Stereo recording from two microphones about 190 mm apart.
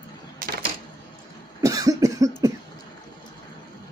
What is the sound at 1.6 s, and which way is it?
Cough, 15° right (ahead or behind).